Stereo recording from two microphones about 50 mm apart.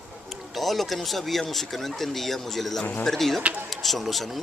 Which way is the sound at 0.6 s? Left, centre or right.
Centre.